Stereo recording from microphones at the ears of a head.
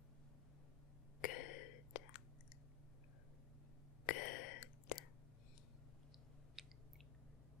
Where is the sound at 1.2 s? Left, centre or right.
Left.